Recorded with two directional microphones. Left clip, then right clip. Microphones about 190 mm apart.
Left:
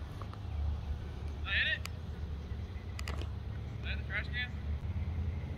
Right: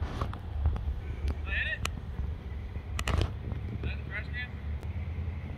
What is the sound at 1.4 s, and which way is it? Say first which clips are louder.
Vehicle: left 1 dB; 5° left (ahead or behind).